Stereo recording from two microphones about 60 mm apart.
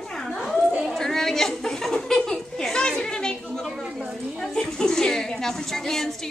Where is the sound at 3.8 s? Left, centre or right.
Centre.